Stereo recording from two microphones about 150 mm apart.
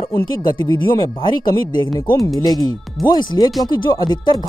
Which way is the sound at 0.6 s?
30° left (ahead or behind).